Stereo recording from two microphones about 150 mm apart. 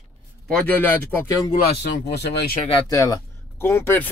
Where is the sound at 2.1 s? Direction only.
90° left.